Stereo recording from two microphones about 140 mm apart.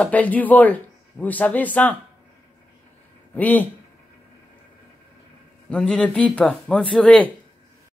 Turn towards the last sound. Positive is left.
turn(degrees=5)  # may be behind; listen again after turning